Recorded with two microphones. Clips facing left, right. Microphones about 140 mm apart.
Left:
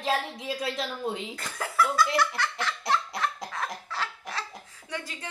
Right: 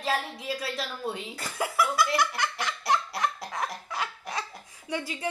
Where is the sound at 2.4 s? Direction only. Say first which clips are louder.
Even; 15° right (ahead or behind).